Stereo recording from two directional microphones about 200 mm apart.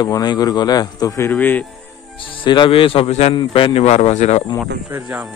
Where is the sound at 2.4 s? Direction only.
25° left (ahead or behind).